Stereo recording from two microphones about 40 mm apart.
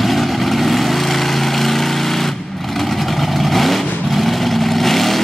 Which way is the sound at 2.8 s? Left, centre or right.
Centre.